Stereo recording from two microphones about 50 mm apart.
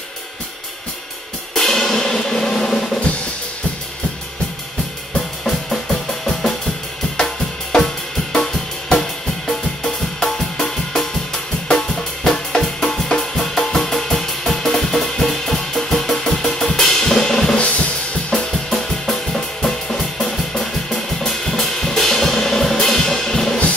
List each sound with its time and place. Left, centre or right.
1.5 s drum: centre
5.1 s drum: centre
7.2 s music: centre
17.6 s drum kit: left
18.3 s drum kit: centre